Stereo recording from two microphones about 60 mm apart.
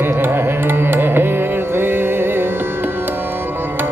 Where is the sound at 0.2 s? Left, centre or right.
Right.